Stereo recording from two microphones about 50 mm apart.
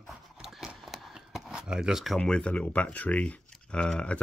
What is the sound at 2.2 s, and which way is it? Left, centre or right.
Speech, centre.